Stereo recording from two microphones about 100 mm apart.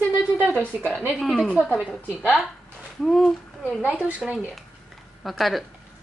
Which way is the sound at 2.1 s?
15° right (ahead or behind).